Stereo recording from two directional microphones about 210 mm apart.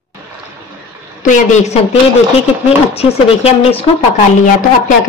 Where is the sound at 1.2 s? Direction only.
35° left (ahead or behind).